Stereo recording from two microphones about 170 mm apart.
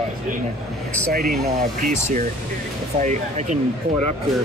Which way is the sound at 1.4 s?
45° right (ahead or behind).